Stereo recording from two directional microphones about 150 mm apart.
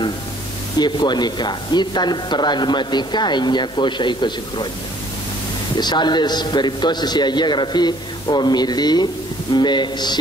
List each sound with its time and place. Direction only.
0.7 s speech: 30° left (ahead or behind)
5.8 s speech: 30° left (ahead or behind)